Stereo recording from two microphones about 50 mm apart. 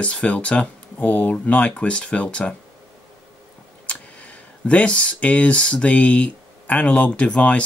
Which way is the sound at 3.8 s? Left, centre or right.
Left.